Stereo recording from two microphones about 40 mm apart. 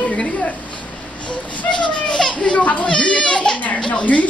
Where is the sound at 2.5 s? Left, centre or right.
Left.